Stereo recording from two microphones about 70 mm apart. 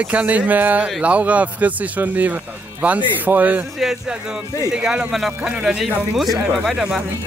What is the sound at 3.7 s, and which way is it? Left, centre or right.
Speech, centre.